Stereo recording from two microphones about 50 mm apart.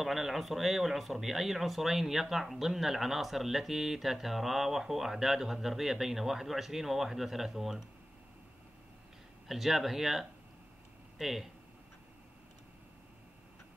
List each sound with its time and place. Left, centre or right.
0.0 s speech: centre
9.5 s speech: centre